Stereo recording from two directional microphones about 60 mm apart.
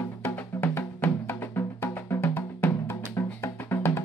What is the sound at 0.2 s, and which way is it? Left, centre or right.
Music, left.